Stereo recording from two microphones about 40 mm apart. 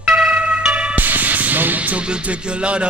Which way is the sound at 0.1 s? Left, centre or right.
Right.